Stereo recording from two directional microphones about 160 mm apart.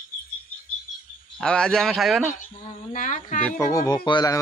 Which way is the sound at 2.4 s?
55° left (ahead or behind).